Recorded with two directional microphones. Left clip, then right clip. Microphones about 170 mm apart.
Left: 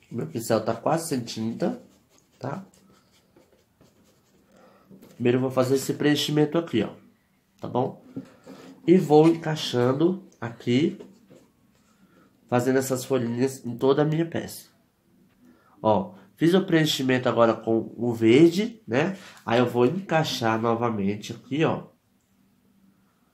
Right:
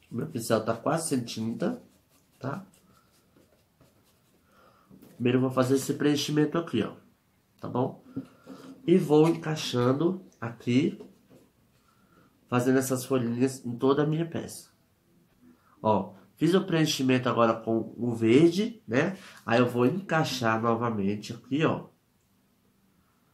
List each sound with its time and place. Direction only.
0.1 s speech: 20° left (ahead or behind)
5.2 s speech: 25° left (ahead or behind)
8.8 s speech: 25° left (ahead or behind)
12.4 s speech: 30° left (ahead or behind)
16.3 s speech: 30° left (ahead or behind)